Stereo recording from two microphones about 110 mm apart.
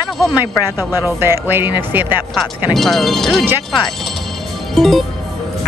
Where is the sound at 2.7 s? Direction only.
5° left (ahead or behind).